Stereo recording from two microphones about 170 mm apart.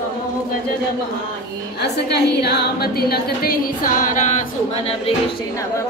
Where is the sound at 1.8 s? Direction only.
75° left (ahead or behind); by 4.4 s 45° left (ahead or behind).